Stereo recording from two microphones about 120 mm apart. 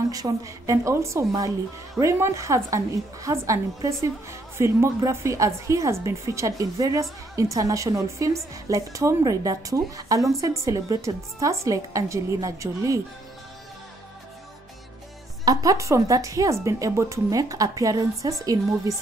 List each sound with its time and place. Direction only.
0.1 s a woman's voice: 30° right (ahead or behind)
15.4 s a woman's voice: 30° right (ahead or behind)